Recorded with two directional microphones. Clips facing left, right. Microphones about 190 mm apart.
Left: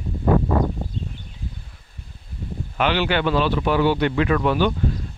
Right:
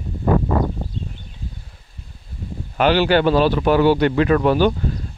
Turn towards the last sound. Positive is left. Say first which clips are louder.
# right 4 dB
turn(degrees=-40)  # may be behind; listen again after turning